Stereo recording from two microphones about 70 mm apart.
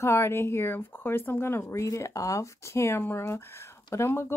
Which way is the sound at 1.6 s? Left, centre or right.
Left.